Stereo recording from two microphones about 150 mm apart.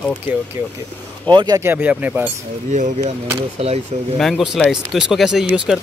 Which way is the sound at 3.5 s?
45° right (ahead or behind).